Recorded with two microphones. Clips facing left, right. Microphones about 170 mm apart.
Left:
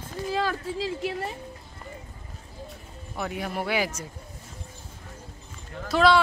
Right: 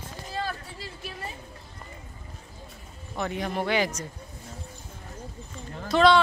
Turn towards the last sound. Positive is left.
turn(degrees=5)  # may be behind; listen again after turning